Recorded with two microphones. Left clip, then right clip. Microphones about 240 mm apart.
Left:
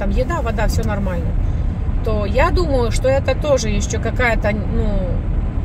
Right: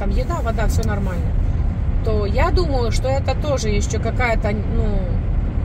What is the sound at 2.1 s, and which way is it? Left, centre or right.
A woman's voice, left.